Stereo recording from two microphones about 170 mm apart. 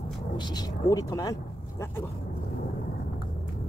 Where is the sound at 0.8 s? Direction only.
20° left (ahead or behind).